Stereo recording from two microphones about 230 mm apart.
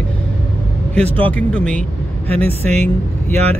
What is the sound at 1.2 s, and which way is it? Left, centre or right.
Speech, centre.